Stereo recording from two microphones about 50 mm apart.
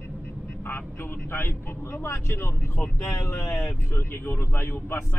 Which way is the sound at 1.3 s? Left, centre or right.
Left.